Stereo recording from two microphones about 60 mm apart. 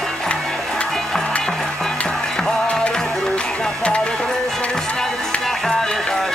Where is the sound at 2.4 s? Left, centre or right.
Centre.